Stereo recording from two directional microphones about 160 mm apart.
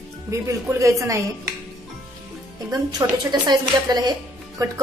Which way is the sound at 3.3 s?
25° right (ahead or behind).